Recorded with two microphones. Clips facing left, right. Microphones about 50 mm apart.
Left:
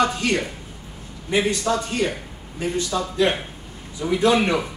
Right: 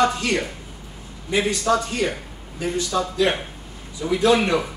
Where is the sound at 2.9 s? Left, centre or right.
Centre.